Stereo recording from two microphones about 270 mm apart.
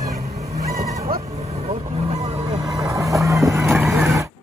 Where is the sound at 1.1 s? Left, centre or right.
Right.